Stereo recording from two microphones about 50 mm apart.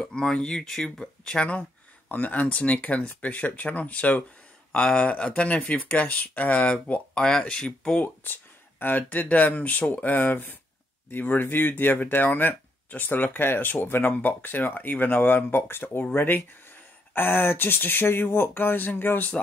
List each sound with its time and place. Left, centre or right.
0.0 s speech: centre
1.6 s speech: left; by 8.0 s centre
8.0 s speech: left